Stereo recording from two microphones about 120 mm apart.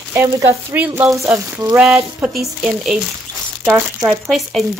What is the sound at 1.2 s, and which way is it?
Speech, 25° right (ahead or behind).